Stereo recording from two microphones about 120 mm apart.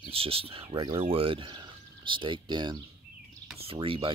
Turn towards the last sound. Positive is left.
turn(degrees=-50)  # may be behind; listen again after turning